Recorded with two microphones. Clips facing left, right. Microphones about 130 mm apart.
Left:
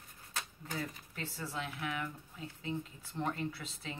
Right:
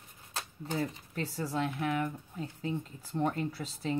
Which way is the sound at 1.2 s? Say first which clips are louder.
Right 8 dB; 40° right (ahead or behind).